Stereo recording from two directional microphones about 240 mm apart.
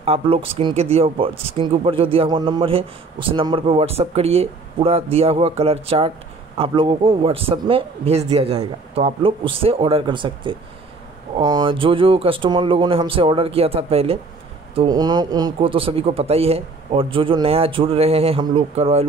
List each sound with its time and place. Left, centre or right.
0.0 s speech: right